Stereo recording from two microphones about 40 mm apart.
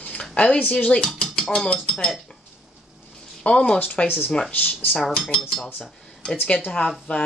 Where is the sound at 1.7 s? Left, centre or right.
Centre.